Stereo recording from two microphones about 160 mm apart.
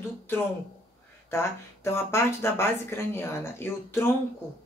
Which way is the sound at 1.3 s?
15° left (ahead or behind).